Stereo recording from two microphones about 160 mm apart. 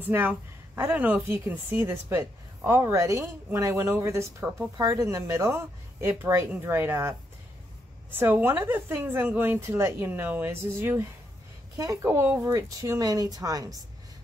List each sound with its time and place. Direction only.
0.0 s speech: 10° right (ahead or behind)